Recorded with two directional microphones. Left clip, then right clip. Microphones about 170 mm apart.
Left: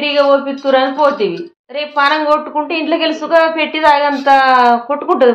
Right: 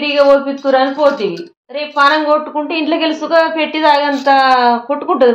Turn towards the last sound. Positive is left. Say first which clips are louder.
# even
turn(degrees=-10)  # may be behind; listen again after turning